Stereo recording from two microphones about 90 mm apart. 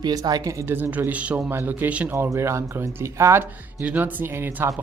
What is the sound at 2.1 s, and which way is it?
Speech, 30° right (ahead or behind).